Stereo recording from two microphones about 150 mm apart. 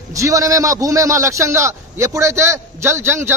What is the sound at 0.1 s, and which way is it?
A man's voice, 20° right (ahead or behind).